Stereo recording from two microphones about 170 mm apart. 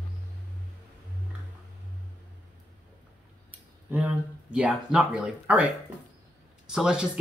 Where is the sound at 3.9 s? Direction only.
10° right (ahead or behind).